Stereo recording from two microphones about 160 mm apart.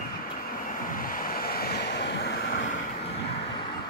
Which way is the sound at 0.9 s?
60° left (ahead or behind).